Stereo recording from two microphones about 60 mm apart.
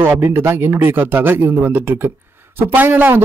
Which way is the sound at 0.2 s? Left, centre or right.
Right.